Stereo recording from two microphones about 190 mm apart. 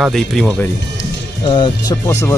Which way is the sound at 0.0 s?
Centre (ahead or behind).